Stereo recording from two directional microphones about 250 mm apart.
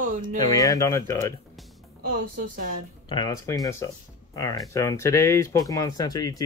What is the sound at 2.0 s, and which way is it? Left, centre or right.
Speech, right.